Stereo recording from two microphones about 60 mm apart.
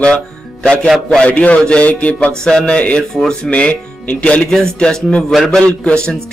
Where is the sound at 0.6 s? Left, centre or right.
Centre.